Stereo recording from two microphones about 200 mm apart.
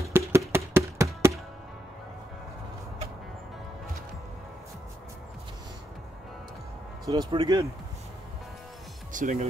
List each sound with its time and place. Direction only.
0.0 s a sound: 15° right (ahead or behind)
7.1 s speech: 20° right (ahead or behind)
9.1 s speech: 40° right (ahead or behind)